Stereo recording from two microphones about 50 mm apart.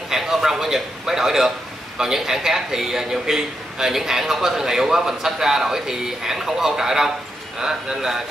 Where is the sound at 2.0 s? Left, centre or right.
Centre.